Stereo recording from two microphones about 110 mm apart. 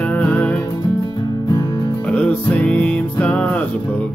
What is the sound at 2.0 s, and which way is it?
Music, 10° left (ahead or behind).